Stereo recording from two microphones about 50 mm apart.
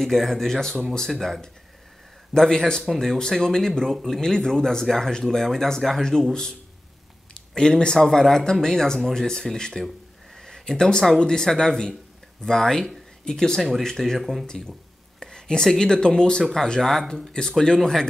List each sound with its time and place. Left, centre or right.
0.0 s speech: centre
2.9 s speech: centre
3.2 s speech: centre
14.4 s speech: centre